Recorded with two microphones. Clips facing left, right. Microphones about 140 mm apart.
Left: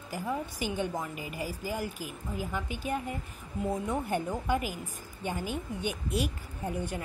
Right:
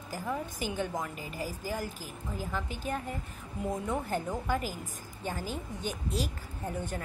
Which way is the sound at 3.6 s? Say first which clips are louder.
Left 1 dB; 5° left (ahead or behind).